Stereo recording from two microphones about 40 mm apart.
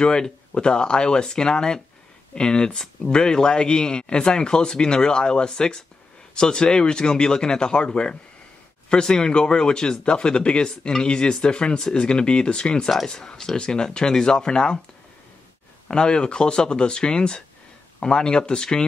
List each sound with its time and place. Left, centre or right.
0.0 s speech: left
15.9 s speech: left